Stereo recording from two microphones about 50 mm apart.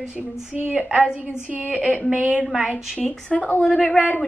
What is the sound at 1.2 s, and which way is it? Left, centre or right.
A woman's voice, right.